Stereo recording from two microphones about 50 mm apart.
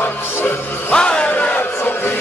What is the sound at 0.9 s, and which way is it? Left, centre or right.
Crowd, left.